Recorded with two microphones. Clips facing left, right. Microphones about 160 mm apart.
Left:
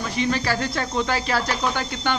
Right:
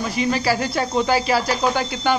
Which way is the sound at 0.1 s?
5° right (ahead or behind).